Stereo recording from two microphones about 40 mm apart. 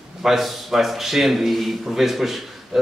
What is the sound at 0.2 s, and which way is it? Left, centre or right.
A man's voice, centre.